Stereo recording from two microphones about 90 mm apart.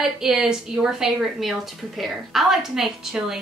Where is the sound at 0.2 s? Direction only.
5° right (ahead or behind).